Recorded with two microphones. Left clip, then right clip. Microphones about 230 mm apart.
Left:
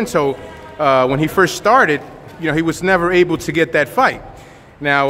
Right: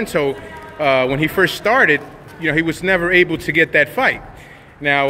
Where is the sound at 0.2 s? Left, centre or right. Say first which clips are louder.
Left 2 dB; centre.